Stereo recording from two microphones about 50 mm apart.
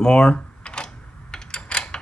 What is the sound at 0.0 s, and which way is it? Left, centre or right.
Typing, left.